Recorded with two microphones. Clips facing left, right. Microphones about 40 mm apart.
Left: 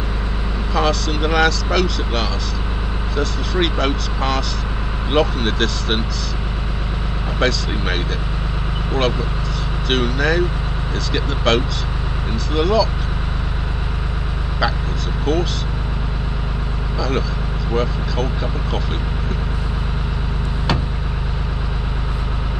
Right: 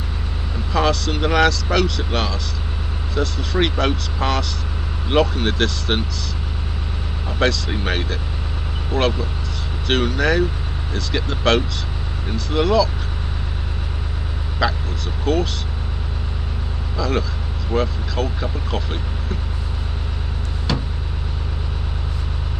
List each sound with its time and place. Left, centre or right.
0.7 s speech: centre
7.3 s speech: centre
14.6 s speech: centre
17.0 s speech: centre